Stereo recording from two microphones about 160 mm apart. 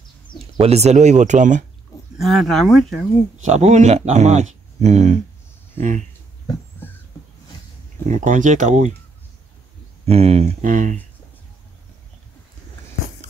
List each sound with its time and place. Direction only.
0.6 s speech: 40° right (ahead or behind)
2.1 s speech: centre (ahead or behind)
3.4 s speech: 45° right (ahead or behind)
5.8 s speech: 55° right (ahead or behind)
6.8 s heart sounds: 15° left (ahead or behind)
8.1 s speech: 55° right (ahead or behind)
10.0 s speech: 40° right (ahead or behind)
10.6 s speech: 55° right (ahead or behind)